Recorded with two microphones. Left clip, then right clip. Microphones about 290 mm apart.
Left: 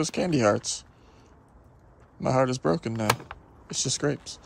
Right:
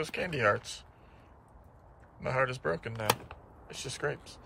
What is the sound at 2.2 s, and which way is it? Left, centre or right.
Speech, centre.